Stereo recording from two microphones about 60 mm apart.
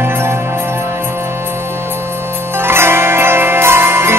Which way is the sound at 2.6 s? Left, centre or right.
Right.